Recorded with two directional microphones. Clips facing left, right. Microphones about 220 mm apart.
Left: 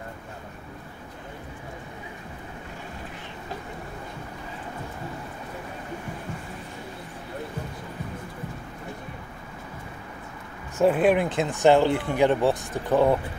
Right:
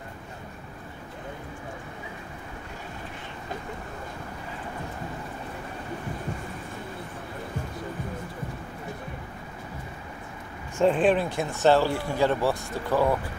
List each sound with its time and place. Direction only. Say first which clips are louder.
10.8 s speech: left 1 dB; 10° left (ahead or behind)